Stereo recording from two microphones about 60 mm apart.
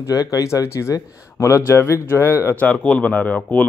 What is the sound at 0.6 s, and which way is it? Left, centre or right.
Speech, left.